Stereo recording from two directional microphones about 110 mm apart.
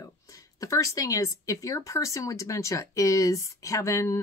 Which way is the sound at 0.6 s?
30° left (ahead or behind).